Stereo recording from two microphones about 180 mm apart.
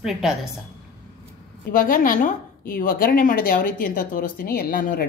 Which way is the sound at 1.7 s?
50° left (ahead or behind).